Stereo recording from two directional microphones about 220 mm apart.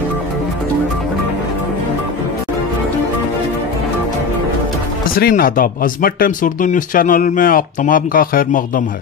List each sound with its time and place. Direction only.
5.1 s speech: 40° left (ahead or behind)